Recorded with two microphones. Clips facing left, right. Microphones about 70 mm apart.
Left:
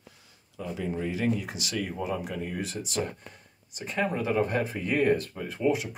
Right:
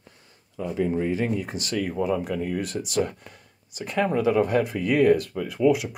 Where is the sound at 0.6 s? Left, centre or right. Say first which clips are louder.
Right 7 dB; right.